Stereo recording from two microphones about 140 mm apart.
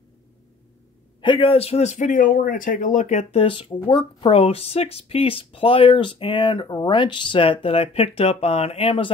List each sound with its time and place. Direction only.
1.2 s a man's voice: 40° left (ahead or behind)